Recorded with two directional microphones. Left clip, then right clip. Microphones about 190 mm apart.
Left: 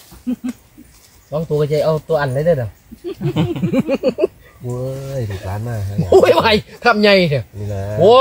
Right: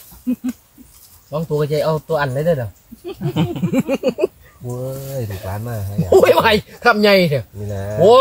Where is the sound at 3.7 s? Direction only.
15° right (ahead or behind).